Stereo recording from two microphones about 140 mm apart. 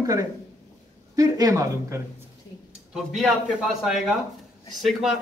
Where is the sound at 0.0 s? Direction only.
25° right (ahead or behind).